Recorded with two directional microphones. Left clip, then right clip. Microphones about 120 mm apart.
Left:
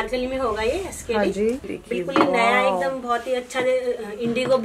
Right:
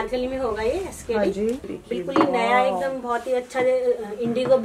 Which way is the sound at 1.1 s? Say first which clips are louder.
Left 1 dB; 35° left (ahead or behind).